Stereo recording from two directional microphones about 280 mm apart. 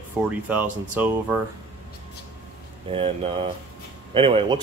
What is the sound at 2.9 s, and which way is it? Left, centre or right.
Speech, centre.